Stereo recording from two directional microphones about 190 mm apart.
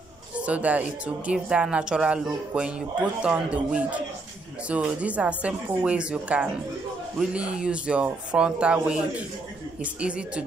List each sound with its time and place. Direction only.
0.4 s speech: 5° right (ahead or behind)